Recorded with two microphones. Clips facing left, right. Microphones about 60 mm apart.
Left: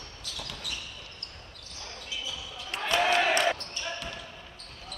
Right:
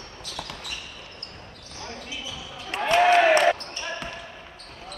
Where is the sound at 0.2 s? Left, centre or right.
Right.